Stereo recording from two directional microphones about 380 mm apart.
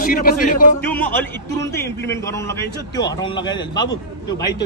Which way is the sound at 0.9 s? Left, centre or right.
Centre.